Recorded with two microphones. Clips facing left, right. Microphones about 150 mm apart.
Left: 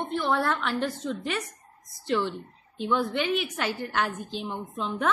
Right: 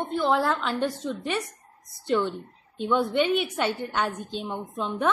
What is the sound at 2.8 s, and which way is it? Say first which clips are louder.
A woman's voice: right 3 dB; 5° left (ahead or behind).